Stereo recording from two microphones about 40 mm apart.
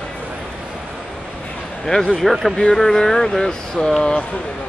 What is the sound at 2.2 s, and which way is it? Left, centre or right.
Speech, centre.